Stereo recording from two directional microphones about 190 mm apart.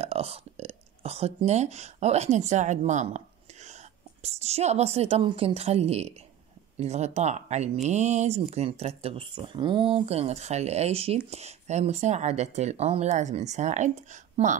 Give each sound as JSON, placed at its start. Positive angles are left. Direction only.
{"t": 0.0, "sound": "speech", "side_deg": -30}